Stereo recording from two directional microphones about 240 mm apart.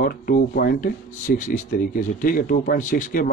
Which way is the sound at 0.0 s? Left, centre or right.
Left.